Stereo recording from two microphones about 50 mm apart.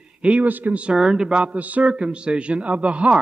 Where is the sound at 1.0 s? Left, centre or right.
Centre; by 1.9 s right.